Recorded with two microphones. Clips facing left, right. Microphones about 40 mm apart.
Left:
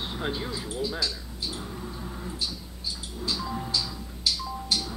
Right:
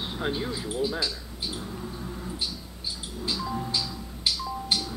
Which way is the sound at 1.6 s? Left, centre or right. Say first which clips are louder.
Right 1 dB; centre.